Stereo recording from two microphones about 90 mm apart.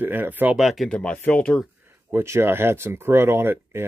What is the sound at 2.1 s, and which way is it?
Speech, 30° right (ahead or behind).